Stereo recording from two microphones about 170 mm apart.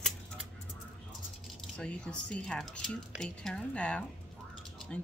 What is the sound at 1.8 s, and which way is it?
Speech, 5° left (ahead or behind).